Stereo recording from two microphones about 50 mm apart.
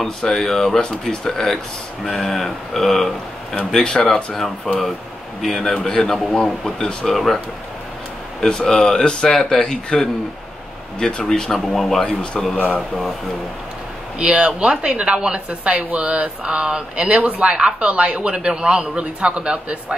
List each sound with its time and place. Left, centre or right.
0.0 s speech: centre
3.5 s speech: centre
5.4 s speech: centre
8.4 s speech: centre
12.0 s speech: centre
14.1 s speech: right